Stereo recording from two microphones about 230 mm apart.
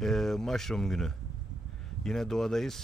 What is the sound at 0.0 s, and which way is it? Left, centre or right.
Speech, centre.